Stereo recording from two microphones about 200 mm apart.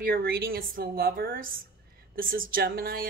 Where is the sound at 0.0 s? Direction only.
50° right (ahead or behind).